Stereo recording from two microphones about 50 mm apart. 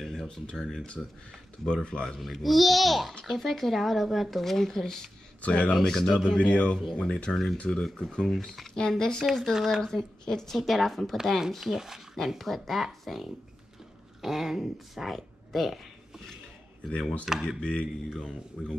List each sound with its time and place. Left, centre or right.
0.0 s speech: centre
2.1 s speech: centre
5.4 s speech: left
5.8 s speech: centre
6.3 s speech: left; by 7.5 s centre
7.5 s speech: centre
7.8 s speech: centre
9.3 s speech: centre
9.8 s speech: centre
17.2 s speech: centre
17.6 s speech: centre
18.6 s speech: centre